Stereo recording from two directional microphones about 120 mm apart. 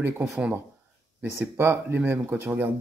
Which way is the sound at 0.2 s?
10° right (ahead or behind).